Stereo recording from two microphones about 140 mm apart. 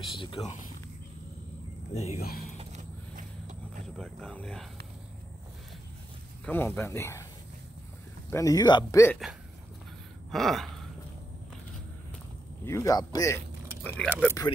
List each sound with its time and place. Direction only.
0.0 s speech: 35° left (ahead or behind)
2.0 s speech: 50° left (ahead or behind)
3.2 s vehicle: 70° right (ahead or behind)
3.9 s speech: 5° left (ahead or behind)
6.4 s speech: 10° left (ahead or behind)
8.3 s speech: 25° left (ahead or behind)
9.2 s speech: centre (ahead or behind)
12.6 s speech: 20° left (ahead or behind)
13.9 s speech: 15° left (ahead or behind)